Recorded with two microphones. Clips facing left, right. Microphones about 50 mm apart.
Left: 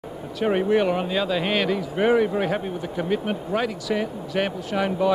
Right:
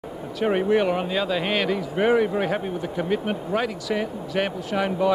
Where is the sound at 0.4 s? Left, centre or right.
Right.